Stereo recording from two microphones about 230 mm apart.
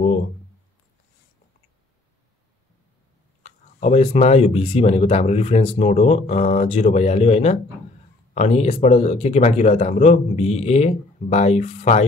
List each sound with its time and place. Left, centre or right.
3.4 s speech: left